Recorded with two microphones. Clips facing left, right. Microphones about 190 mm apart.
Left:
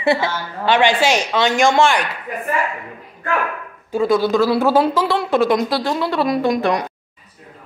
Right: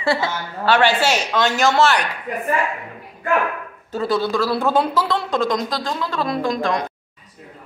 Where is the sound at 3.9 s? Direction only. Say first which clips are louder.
Left 5 dB; 15° left (ahead or behind).